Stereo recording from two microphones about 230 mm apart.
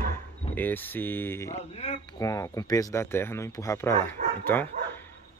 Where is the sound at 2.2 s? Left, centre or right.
Centre.